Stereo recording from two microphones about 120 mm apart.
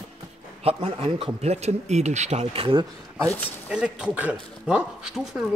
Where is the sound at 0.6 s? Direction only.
55° right (ahead or behind).